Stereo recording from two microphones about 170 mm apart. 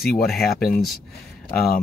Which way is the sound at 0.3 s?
Centre (ahead or behind).